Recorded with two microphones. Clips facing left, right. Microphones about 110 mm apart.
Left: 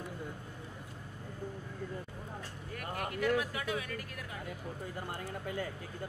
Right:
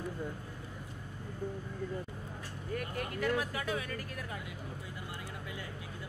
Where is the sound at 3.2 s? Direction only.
35° right (ahead or behind).